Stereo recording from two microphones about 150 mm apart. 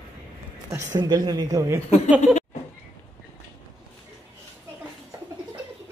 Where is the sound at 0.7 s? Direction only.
20° right (ahead or behind).